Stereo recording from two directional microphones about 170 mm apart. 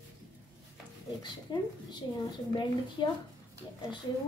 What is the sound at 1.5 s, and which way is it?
Speech, 25° left (ahead or behind).